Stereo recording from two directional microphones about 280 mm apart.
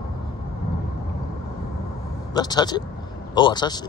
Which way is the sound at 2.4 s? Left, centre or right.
Centre.